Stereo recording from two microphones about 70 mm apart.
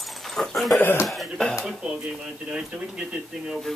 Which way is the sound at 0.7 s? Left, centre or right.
Left.